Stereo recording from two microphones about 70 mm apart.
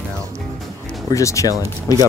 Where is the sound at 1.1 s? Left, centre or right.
Left.